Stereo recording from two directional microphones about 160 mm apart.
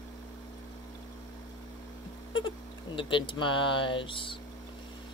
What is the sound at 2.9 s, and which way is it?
Speech, 30° left (ahead or behind).